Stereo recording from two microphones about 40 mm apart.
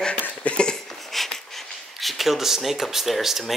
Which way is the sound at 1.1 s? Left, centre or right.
Centre.